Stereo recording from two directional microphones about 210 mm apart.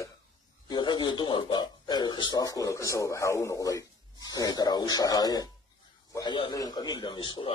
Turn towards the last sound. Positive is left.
turn(degrees=25)  # may be behind; listen again after turning